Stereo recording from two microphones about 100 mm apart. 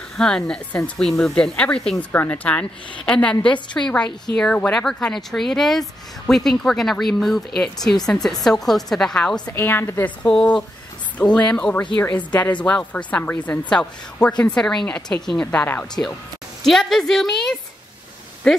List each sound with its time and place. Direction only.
0.2 s a woman's voice: 5° left (ahead or behind)
9.5 s a woman's voice: 25° left (ahead or behind)
10.2 s speech: 5° left (ahead or behind)
15.4 s a woman's voice: 20° left (ahead or behind)
16.6 s a woman's voice: centre (ahead or behind)